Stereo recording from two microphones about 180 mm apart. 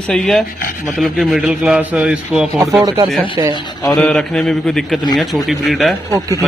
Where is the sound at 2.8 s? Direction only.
20° right (ahead or behind).